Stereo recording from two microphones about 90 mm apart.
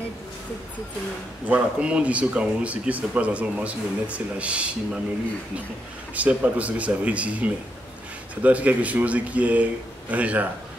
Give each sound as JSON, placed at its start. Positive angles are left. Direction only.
{"t": 1.4, "sound": "speech", "side_deg": -15}
{"t": 6.1, "sound": "speech", "side_deg": -15}